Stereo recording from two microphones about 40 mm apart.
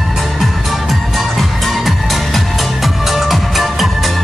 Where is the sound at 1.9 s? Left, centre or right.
Centre.